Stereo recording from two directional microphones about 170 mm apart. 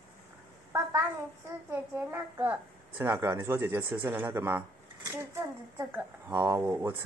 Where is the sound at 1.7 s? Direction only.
15° right (ahead or behind).